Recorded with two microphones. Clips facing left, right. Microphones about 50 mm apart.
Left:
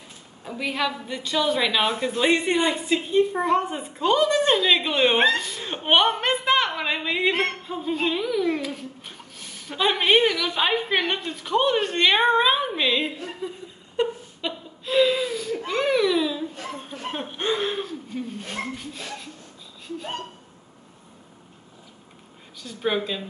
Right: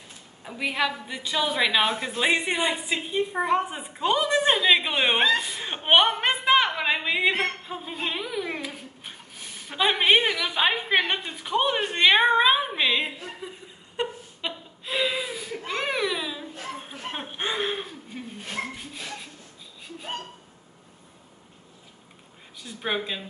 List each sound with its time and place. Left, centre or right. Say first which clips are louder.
0.4 s speech: even; centre
13.9 s laughter: left 5 dB; centre
18.8 s speech: left 2 dB; centre
22.6 s speech: left 4 dB; centre